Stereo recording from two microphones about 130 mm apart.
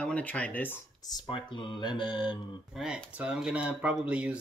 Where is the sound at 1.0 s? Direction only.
30° left (ahead or behind).